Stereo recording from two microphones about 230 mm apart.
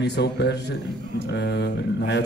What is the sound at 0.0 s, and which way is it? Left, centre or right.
A man's voice, left.